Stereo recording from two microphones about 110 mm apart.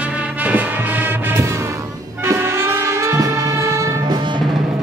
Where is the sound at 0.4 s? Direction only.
15° right (ahead or behind).